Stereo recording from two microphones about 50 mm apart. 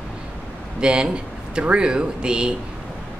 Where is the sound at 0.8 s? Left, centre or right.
Centre.